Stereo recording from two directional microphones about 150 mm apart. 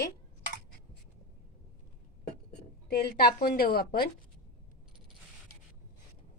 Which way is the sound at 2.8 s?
90° left.